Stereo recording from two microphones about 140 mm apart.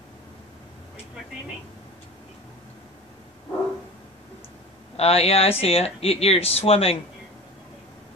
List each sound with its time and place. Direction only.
4.9 s speech: 45° left (ahead or behind)